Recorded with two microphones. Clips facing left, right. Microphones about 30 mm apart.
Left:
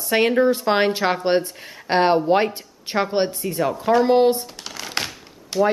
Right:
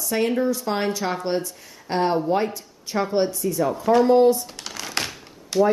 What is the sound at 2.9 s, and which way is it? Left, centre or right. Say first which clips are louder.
Speech: left 1 dB; left.